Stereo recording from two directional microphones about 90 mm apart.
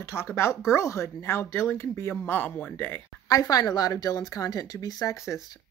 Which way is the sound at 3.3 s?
40° left (ahead or behind).